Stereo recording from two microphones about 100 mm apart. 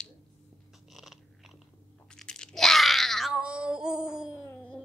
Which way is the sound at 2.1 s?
5° left (ahead or behind).